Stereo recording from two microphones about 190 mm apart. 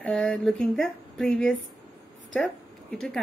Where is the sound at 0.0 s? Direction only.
5° left (ahead or behind).